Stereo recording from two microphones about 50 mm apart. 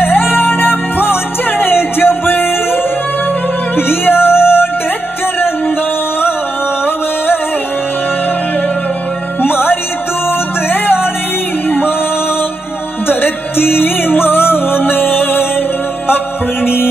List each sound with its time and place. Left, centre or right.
0.0 s music: left
9.4 s music: left
13.1 s music: left
16.6 s music: left